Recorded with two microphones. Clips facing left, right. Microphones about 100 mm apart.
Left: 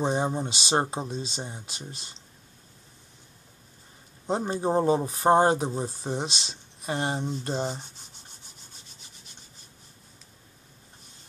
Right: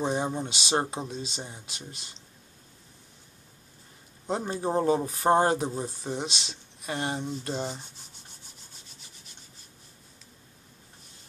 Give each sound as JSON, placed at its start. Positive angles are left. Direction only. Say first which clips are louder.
{"t": 0.0, "sound": "speech", "louder": "left 2 dB", "side_deg": 30}
{"t": 4.3, "sound": "speech", "louder": "left 3 dB", "side_deg": 25}